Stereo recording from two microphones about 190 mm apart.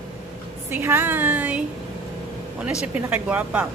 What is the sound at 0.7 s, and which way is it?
Speech, 15° right (ahead or behind).